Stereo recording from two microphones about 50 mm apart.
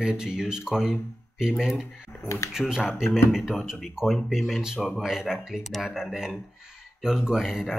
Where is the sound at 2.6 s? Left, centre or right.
Centre.